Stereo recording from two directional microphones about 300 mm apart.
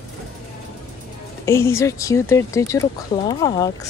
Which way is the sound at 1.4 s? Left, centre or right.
Centre.